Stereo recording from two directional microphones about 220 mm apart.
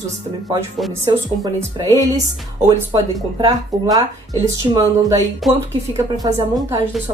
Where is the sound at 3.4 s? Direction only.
15° right (ahead or behind).